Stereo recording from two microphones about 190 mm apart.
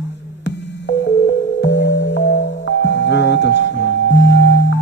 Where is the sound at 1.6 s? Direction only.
65° left (ahead or behind).